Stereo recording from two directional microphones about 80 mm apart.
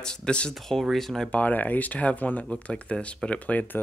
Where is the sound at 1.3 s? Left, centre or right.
Centre.